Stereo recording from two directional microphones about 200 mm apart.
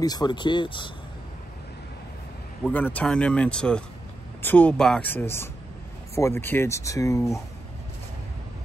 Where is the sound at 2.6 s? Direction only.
5° left (ahead or behind).